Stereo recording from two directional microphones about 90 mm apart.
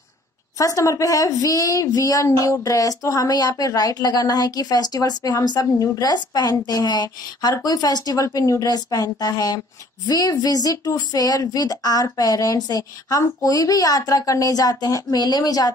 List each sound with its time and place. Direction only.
0.6 s a woman's voice: 40° left (ahead or behind)